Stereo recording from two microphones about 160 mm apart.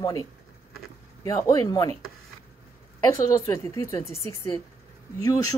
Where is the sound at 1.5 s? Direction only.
20° left (ahead or behind).